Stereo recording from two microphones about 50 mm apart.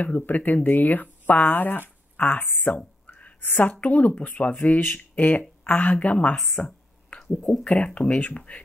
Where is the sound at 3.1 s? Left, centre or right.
Left.